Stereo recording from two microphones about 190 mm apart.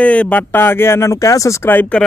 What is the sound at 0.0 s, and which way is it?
Speech, 5° left (ahead or behind).